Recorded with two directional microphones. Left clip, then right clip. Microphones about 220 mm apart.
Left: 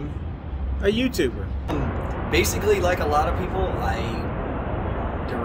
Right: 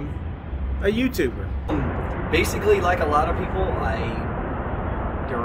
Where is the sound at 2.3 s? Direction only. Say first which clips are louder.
Right 1 dB; 25° left (ahead or behind).